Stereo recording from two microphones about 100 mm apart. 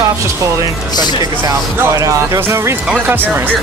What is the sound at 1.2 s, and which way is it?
Speech, 35° right (ahead or behind).